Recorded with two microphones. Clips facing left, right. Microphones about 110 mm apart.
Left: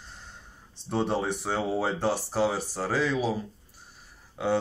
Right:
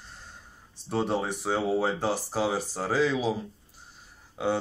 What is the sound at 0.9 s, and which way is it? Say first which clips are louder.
Speech: even; 5° right (ahead or behind).